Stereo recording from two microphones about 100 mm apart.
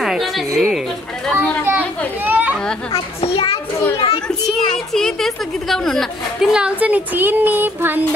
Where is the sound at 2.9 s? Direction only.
75° left (ahead or behind).